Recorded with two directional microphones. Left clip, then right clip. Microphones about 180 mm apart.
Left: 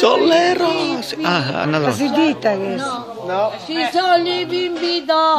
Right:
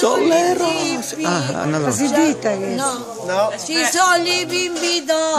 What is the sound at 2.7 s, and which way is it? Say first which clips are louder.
A man's voice: right 1 dB; 30° right (ahead or behind).